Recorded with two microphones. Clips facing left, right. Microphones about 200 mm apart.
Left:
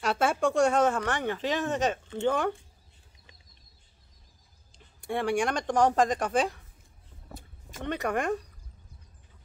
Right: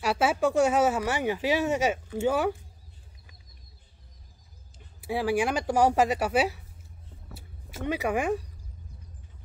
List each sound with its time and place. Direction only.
0.0 s speech: 5° right (ahead or behind)
4.7 s speech: 5° right (ahead or behind)